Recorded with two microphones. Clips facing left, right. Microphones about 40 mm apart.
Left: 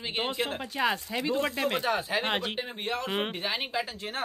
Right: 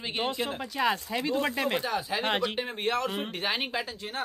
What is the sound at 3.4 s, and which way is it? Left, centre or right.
Speech, centre.